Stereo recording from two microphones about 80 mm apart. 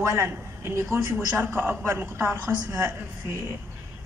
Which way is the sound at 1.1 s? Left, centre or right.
Right.